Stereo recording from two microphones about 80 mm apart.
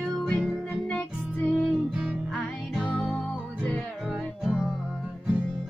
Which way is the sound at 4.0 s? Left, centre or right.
Centre.